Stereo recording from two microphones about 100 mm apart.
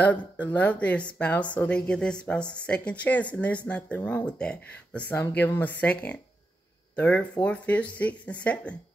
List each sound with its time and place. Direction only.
0.0 s speech: 15° left (ahead or behind)
7.0 s speech: 10° left (ahead or behind)